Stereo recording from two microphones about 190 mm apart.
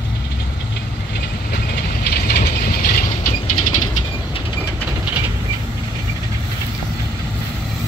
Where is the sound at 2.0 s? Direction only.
55° left (ahead or behind).